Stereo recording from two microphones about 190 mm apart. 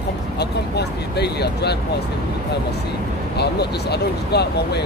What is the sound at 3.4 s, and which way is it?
Speech, 60° left (ahead or behind).